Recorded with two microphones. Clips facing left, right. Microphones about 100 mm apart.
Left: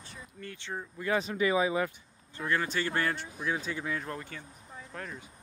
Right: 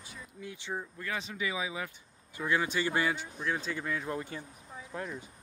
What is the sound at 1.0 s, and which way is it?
Speech, 40° left (ahead or behind).